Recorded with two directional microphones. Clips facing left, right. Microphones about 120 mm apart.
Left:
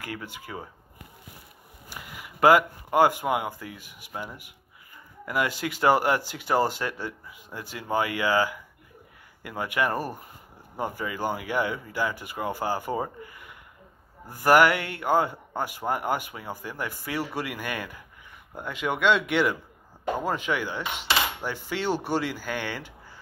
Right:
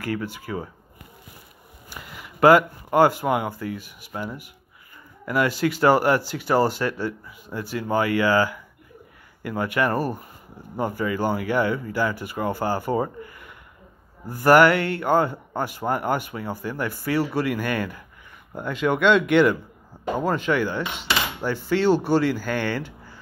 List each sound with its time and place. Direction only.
0.0 s speech: 20° left (ahead or behind)
1.9 s speech: 15° left (ahead or behind)
9.6 s speech: 15° left (ahead or behind)
14.3 s speech: 15° left (ahead or behind)